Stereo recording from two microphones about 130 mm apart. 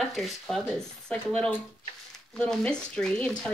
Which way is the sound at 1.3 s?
15° left (ahead or behind).